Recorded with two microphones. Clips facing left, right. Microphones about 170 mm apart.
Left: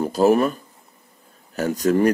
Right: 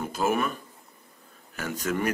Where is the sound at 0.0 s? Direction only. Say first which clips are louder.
Left 10 dB; 35° left (ahead or behind).